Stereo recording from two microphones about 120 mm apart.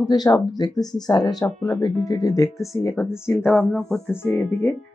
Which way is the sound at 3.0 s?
20° left (ahead or behind).